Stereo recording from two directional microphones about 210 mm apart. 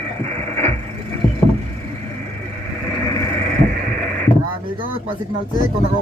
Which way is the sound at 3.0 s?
15° left (ahead or behind).